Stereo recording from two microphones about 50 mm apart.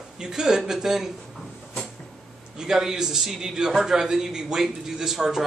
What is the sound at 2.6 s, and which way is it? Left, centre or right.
A man's voice, centre.